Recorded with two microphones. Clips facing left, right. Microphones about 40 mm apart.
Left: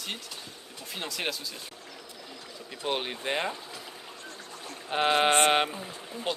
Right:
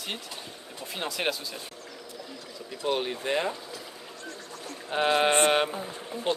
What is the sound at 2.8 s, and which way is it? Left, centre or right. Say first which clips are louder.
Speech: right 3 dB; left.